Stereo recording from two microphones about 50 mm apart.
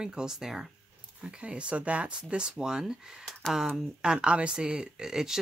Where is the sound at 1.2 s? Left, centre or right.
Right.